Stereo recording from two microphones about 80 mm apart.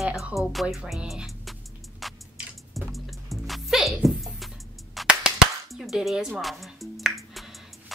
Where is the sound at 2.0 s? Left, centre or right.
Centre.